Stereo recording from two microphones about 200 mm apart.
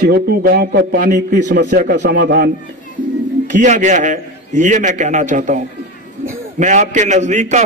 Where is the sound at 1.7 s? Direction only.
55° right (ahead or behind).